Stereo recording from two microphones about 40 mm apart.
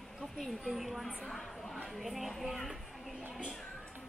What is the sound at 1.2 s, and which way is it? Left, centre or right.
Speech, centre.